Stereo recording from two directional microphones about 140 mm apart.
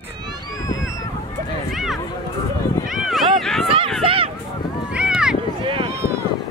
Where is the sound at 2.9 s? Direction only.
Centre (ahead or behind).